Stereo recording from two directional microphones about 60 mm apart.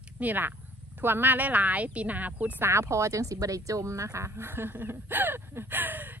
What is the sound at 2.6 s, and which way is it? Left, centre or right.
Speech, right.